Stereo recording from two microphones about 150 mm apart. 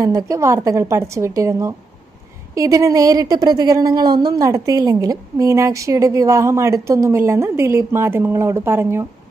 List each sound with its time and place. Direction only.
0.0 s a woman's voice: 20° right (ahead or behind)